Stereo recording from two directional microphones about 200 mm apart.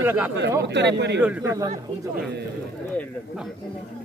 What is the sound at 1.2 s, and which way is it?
Speech, 10° right (ahead or behind).